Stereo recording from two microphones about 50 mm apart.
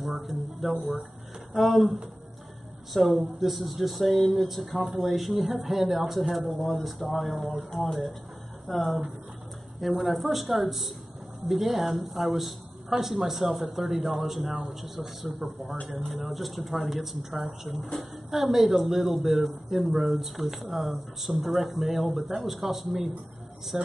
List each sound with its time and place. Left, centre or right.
0.0 s speech: centre